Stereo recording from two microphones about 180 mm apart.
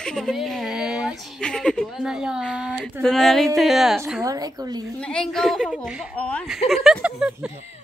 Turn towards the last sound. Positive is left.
turn(degrees=-5)  # may be behind; listen again after turning